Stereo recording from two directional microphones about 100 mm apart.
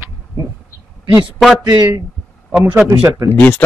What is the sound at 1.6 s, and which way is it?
Speech, 40° right (ahead or behind).